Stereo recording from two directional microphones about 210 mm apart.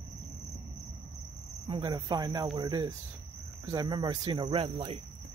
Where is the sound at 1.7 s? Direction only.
20° right (ahead or behind).